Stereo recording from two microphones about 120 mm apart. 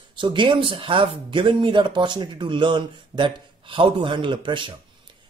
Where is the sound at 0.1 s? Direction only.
40° right (ahead or behind).